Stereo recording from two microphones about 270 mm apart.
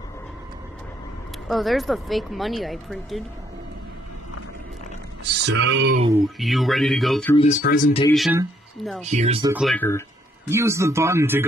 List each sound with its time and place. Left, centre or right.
1.5 s speech: centre
5.4 s speech: right
6.2 s speech: centre
7.3 s speech: left
8.1 s speech: centre
9.0 s speech: right
9.5 s speech: centre
10.5 s speech: centre